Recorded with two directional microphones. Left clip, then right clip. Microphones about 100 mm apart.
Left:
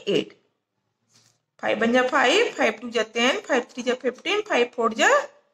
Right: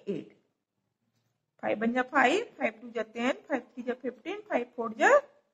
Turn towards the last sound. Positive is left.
turn(degrees=25)  # may be behind; listen again after turning